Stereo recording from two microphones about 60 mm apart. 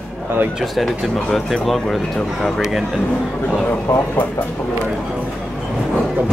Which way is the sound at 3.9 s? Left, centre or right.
Left.